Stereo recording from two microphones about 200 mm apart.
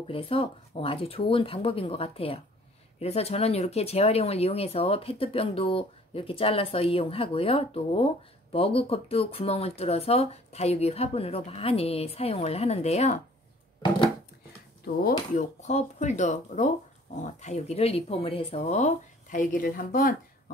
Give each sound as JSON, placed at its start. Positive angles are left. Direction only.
{"t": 0.1, "sound": "speech", "side_deg": 25}
{"t": 15.0, "sound": "speech", "side_deg": 40}